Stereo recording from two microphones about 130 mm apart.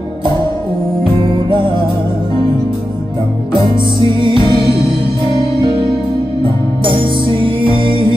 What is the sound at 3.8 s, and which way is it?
Music, 40° right (ahead or behind).